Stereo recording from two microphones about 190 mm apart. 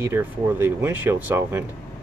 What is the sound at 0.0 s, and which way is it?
Speech, 10° right (ahead or behind).